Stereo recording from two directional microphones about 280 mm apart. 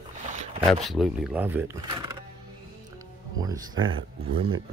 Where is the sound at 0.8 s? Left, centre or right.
Centre.